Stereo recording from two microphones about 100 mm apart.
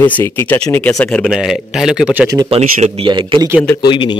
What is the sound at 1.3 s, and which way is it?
Speech, 5° right (ahead or behind).